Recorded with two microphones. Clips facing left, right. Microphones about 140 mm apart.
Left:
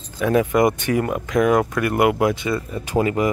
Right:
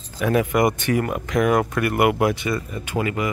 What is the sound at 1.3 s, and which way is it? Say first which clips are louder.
Speech: left 2 dB; 5° right (ahead or behind).